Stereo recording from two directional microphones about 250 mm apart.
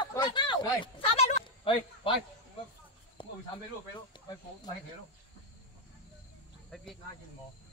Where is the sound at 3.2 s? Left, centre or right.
Centre.